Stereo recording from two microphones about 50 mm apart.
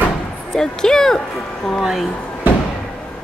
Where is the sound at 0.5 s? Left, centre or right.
Centre.